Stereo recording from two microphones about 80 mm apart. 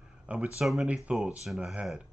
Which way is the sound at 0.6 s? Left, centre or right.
Centre.